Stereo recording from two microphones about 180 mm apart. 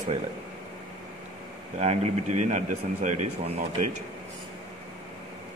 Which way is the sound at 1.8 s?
40° right (ahead or behind).